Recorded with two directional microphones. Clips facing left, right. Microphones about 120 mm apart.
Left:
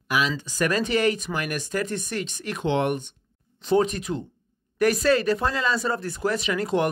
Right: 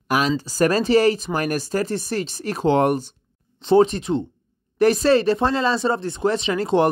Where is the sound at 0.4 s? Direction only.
35° right (ahead or behind).